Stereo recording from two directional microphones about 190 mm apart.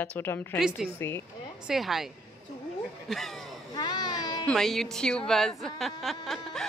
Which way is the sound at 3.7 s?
20° left (ahead or behind).